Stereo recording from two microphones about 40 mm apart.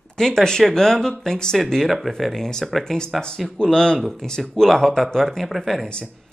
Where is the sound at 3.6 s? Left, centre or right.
Centre.